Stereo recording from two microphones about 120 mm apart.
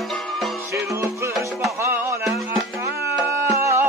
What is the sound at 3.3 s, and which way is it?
Music, 25° right (ahead or behind).